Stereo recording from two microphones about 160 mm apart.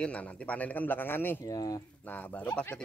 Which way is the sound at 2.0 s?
10° left (ahead or behind).